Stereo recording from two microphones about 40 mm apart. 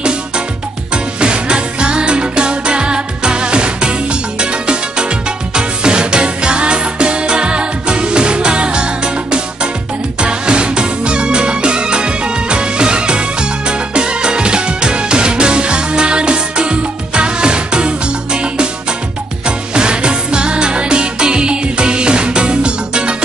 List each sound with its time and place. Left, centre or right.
0.9 s music: right